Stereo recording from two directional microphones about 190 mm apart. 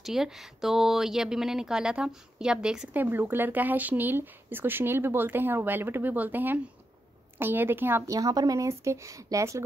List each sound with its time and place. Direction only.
0.0 s speech: centre (ahead or behind)